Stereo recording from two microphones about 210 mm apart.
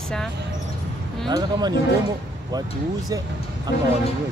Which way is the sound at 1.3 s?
20° right (ahead or behind).